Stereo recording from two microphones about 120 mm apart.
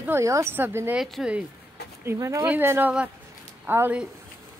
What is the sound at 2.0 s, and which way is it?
Speech, 25° right (ahead or behind).